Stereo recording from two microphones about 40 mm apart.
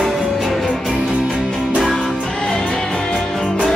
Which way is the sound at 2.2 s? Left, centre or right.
Centre.